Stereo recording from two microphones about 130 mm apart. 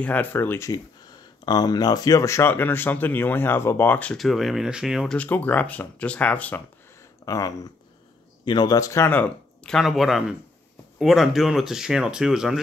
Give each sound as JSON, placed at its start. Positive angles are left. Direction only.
{"t": 0.0, "sound": "speech", "side_deg": 10}
{"t": 1.4, "sound": "speech", "side_deg": 30}
{"t": 4.2, "sound": "speech", "side_deg": 0}
{"t": 5.1, "sound": "speech", "side_deg": 10}
{"t": 7.2, "sound": "speech", "side_deg": 25}